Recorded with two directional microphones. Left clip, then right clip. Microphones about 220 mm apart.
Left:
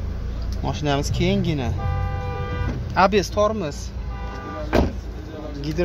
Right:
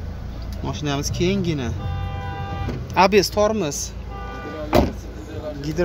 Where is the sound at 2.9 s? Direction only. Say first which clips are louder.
Right 2 dB; 15° right (ahead or behind).